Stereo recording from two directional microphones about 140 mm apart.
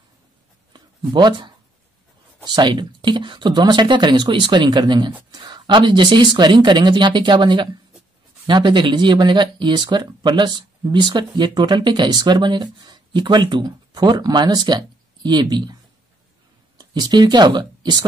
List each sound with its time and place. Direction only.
0.7 s speech: 35° right (ahead or behind)
16.7 s speech: 30° right (ahead or behind)